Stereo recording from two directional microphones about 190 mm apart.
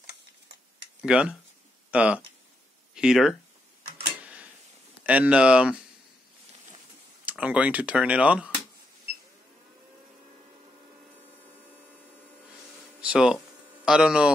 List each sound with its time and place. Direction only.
1.0 s speech: 5° right (ahead or behind)
4.2 s tick-tock: 5° right (ahead or behind)
5.0 s speech: 10° right (ahead or behind)
7.2 s speech: 5° right (ahead or behind)
13.0 s speech: 5° right (ahead or behind)